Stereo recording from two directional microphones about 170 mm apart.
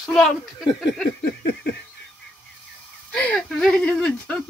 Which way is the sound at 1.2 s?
80° left.